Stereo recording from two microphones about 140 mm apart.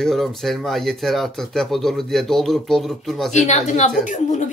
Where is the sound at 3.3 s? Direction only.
55° left (ahead or behind).